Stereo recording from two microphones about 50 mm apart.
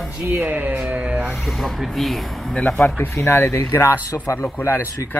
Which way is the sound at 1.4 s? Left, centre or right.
Centre.